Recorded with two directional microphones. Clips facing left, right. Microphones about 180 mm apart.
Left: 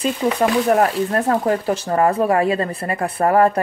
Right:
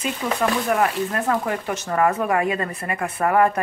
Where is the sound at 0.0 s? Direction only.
35° left (ahead or behind).